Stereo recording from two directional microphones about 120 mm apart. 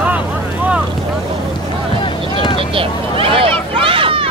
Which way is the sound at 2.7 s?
50° right (ahead or behind).